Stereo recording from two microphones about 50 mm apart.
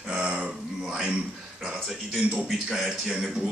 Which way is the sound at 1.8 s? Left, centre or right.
Centre.